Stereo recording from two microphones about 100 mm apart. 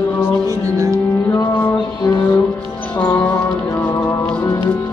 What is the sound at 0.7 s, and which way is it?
Music, 30° right (ahead or behind).